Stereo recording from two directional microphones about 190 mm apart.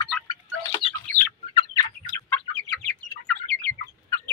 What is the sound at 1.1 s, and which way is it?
Chicken, 15° left (ahead or behind).